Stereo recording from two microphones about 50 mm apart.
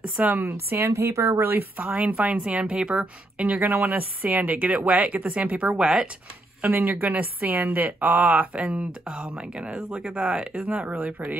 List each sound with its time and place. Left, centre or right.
0.2 s speech: right
0.7 s a woman's voice: right
2.0 s speech: right
6.6 s a woman's voice: right
10.7 s a woman's voice: right